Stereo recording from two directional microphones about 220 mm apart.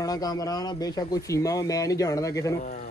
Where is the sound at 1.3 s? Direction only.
15° left (ahead or behind).